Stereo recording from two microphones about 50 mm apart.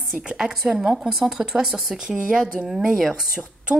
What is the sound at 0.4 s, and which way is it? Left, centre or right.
A woman's voice, centre.